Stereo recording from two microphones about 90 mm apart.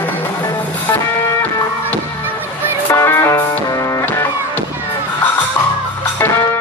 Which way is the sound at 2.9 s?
30° left (ahead or behind).